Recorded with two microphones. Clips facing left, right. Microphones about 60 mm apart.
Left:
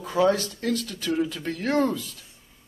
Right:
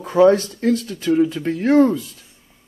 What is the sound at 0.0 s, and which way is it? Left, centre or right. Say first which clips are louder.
Speech: right 8 dB; right.